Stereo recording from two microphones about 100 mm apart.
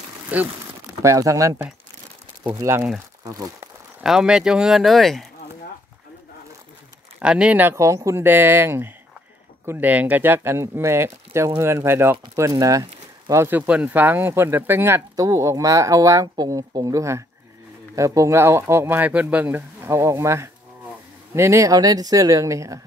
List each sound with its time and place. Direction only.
0.3 s speech: 15° right (ahead or behind)
1.0 s speech: 35° right (ahead or behind)
2.6 s speech: 25° right (ahead or behind)
4.0 s speech: 5° right (ahead or behind)
7.2 s speech: 10° right (ahead or behind)
7.6 s speech: 30° right (ahead or behind)
15.1 s speech: 35° right (ahead or behind)